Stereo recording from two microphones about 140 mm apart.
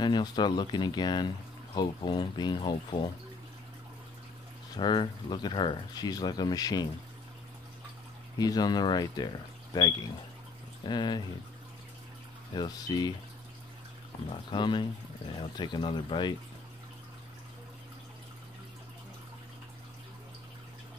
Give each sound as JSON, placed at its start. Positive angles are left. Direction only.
{"t": 0.0, "sound": "speech", "side_deg": 30}
{"t": 4.7, "sound": "speech", "side_deg": 35}
{"t": 8.4, "sound": "speech", "side_deg": 30}
{"t": 12.5, "sound": "speech", "side_deg": 25}
{"t": 14.5, "sound": "speech", "side_deg": 35}